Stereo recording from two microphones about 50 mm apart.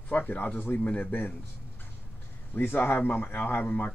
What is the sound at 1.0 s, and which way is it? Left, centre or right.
Speech, left.